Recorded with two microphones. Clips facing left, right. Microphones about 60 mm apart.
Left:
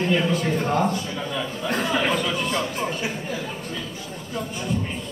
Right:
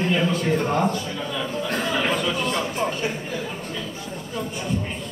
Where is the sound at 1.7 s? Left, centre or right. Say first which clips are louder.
Left 2 dB; centre.